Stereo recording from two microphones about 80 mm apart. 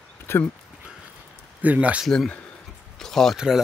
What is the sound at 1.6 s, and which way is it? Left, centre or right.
Speech, centre.